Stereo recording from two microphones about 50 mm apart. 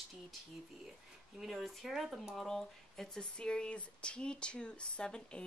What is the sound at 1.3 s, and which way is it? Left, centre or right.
Speech, centre.